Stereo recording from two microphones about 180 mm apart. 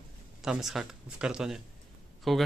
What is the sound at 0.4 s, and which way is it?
Speech, centre (ahead or behind).